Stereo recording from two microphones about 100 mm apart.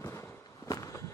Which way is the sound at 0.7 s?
35° left (ahead or behind).